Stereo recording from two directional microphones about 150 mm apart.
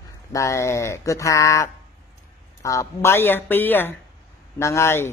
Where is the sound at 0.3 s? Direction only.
20° left (ahead or behind).